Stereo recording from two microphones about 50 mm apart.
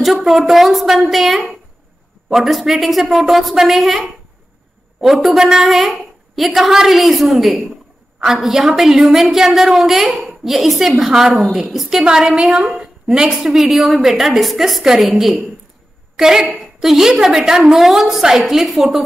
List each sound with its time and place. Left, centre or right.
0.0 s a woman's voice: centre
12.8 s a sound: centre
13.5 s a woman's voice: centre